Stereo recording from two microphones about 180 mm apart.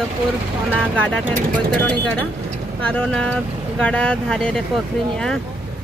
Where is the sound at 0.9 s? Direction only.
5° left (ahead or behind).